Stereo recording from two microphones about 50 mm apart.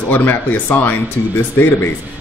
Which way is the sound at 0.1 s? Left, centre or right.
Left.